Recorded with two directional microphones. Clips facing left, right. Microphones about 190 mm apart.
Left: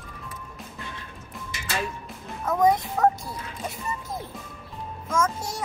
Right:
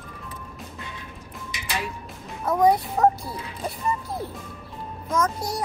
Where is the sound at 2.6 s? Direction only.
35° right (ahead or behind).